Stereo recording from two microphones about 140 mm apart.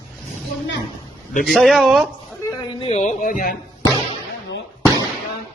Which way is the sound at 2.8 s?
55° left (ahead or behind).